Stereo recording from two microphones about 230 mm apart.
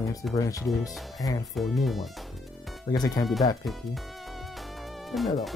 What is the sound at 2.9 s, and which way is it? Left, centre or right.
Speech, centre.